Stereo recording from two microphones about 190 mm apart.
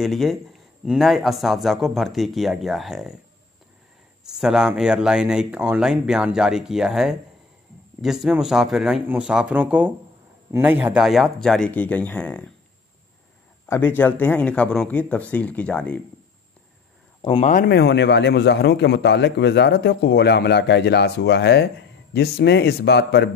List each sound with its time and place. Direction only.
0.0 s a man's voice: centre (ahead or behind)
4.2 s a man's voice: 5° right (ahead or behind)
13.7 s speech: 10° left (ahead or behind)
17.4 s speech: 40° left (ahead or behind)
17.6 s a man's voice: 60° left (ahead or behind)